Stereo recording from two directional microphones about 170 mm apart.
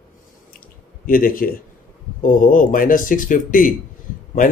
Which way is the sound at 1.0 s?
55° left (ahead or behind).